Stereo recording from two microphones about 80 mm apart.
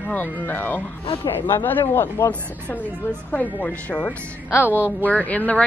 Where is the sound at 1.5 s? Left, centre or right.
Left.